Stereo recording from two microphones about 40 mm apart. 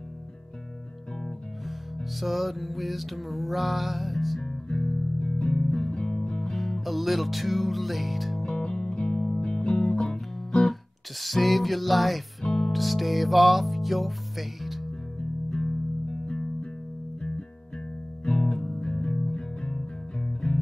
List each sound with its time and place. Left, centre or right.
2.1 s music: centre
4.4 s music: centre
8.5 s music: centre
18.2 s music: centre